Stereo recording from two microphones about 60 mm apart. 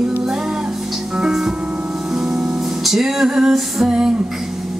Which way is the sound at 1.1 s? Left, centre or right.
Centre.